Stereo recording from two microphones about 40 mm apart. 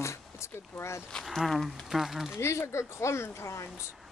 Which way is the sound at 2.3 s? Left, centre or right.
Left.